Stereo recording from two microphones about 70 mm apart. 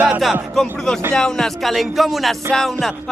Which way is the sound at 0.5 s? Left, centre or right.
Centre.